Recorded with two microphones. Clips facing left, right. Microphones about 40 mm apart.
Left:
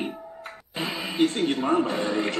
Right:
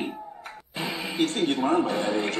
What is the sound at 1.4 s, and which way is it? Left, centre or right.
Speech, centre.